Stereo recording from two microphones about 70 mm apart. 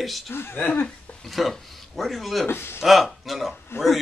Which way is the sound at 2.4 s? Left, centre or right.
Left.